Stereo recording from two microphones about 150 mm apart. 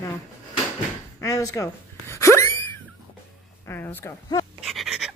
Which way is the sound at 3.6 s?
15° left (ahead or behind).